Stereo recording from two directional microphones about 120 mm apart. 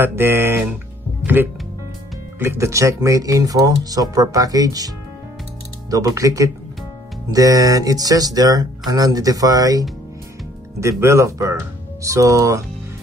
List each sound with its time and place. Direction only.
0.0 s speech: 20° right (ahead or behind)